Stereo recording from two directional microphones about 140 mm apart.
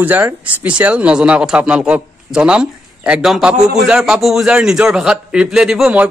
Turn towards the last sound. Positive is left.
turn(degrees=-5)  # may be behind; listen again after turning